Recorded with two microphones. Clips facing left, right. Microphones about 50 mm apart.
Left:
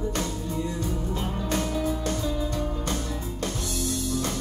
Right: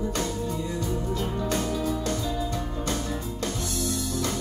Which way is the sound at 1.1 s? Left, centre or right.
Left.